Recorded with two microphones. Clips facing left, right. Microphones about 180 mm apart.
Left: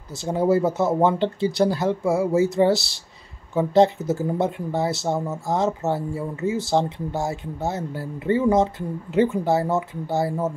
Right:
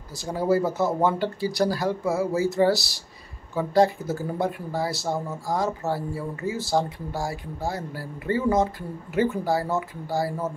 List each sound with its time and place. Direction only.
0.2 s speech: 20° left (ahead or behind)